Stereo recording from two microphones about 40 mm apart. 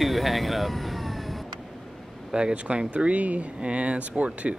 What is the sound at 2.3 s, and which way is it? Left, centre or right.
Speech, centre.